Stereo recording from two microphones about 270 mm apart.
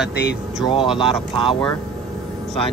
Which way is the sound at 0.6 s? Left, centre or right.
Centre.